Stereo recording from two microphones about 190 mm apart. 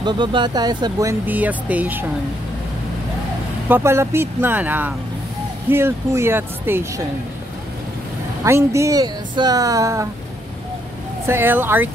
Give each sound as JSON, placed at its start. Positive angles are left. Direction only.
{"t": 0.0, "sound": "speech", "side_deg": -25}
{"t": 3.6, "sound": "speech", "side_deg": -10}
{"t": 8.5, "sound": "speech", "side_deg": -15}
{"t": 11.2, "sound": "speech", "side_deg": -10}